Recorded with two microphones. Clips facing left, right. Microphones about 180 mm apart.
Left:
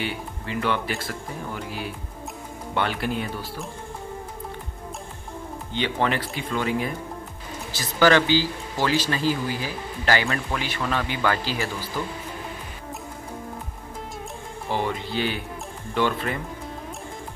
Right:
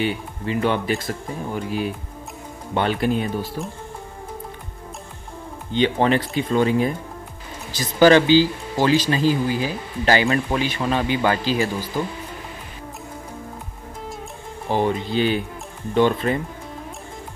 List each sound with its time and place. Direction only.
0.0 s speech: 20° right (ahead or behind)
5.8 s speech: 25° right (ahead or behind)
7.7 s speech: 20° right (ahead or behind)
14.7 s speech: 20° right (ahead or behind)